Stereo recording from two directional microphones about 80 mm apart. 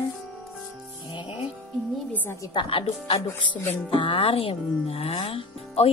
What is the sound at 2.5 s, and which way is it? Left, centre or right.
A woman's voice, left.